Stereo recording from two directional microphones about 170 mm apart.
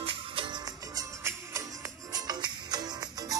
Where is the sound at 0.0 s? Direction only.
30° right (ahead or behind).